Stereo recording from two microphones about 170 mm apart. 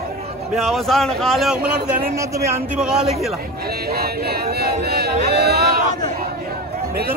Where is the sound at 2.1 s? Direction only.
15° right (ahead or behind).